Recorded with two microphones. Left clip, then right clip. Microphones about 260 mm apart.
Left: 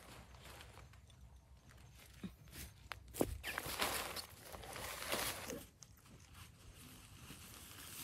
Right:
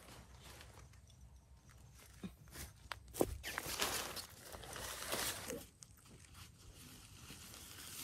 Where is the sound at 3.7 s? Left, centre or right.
Left.